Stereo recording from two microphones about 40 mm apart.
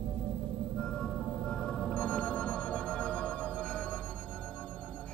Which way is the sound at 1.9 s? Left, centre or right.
Left.